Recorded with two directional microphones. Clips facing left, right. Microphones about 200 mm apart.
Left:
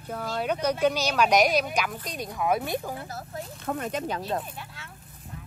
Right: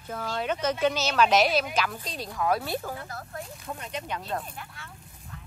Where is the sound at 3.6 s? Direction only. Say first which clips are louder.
Left 10 dB; 55° left (ahead or behind).